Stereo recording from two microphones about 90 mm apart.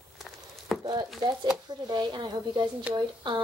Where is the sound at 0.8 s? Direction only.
50° right (ahead or behind).